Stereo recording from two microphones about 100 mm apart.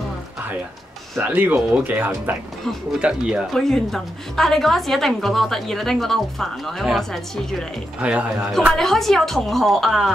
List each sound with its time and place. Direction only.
1.1 s speech: 20° right (ahead or behind)
3.5 s a woman's voice: 5° left (ahead or behind)
8.7 s a woman's voice: 5° left (ahead or behind)